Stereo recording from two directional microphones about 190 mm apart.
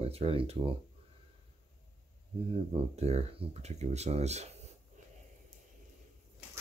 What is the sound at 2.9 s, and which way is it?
Speech, 35° right (ahead or behind).